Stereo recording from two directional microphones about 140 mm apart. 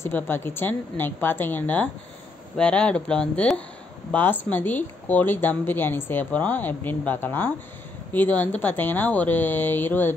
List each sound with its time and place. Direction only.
0.0 s speech: 15° left (ahead or behind)